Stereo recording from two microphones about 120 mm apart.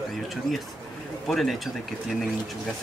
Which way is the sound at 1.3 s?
Centre (ahead or behind).